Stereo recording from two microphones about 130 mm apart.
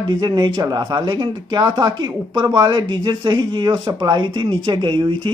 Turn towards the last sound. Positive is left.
turn(degrees=-40)  # may be behind; listen again after turning